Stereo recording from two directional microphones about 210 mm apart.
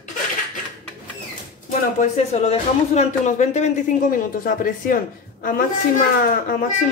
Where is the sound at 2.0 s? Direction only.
30° left (ahead or behind).